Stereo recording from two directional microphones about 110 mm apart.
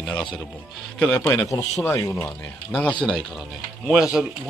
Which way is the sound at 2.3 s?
5° left (ahead or behind).